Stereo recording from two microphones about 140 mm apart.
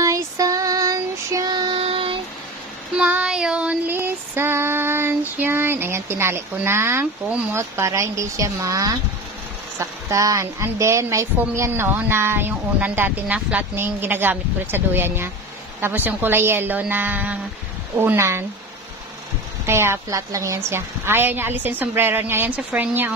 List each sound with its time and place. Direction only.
0.0 s female singing: 25° right (ahead or behind)
1.8 s a sound: 40° right (ahead or behind)
3.0 s female singing: 10° right (ahead or behind)
5.4 s speech: 15° right (ahead or behind)
19.6 s speech: 15° right (ahead or behind)